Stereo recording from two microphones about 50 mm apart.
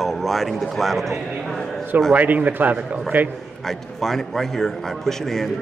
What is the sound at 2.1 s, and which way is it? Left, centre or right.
A man's voice, right.